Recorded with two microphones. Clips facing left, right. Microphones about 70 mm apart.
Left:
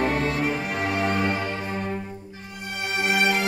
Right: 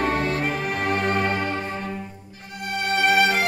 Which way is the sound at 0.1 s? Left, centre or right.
Right.